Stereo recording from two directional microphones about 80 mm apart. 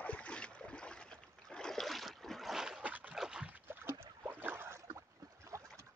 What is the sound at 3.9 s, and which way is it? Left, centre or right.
Boat, right.